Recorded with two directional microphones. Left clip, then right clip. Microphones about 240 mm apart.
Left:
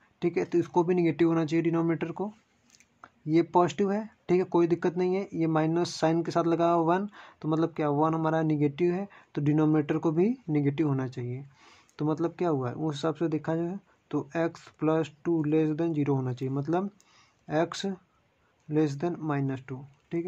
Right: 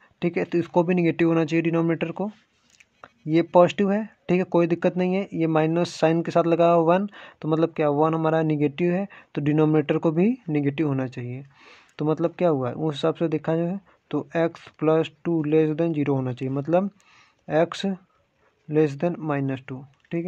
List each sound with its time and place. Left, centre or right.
0.2 s speech: right